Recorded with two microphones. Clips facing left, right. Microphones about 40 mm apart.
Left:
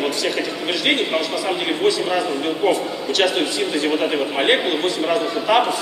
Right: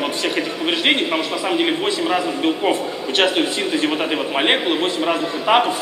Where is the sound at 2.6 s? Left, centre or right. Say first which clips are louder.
Left 1 dB; right.